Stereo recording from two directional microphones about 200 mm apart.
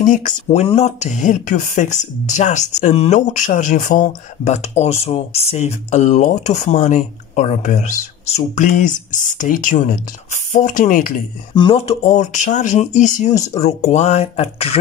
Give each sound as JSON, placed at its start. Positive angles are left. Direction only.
{"t": 0.0, "sound": "speech", "side_deg": 40}
{"t": 11.5, "sound": "speech", "side_deg": 25}